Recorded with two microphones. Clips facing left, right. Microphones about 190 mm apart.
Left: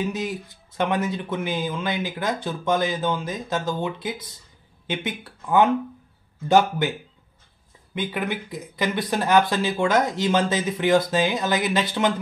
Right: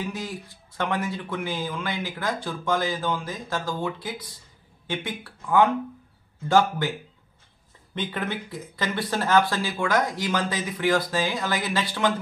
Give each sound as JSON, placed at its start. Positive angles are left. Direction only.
{"t": 0.0, "sound": "speech", "side_deg": 20}
{"t": 7.9, "sound": "speech", "side_deg": 10}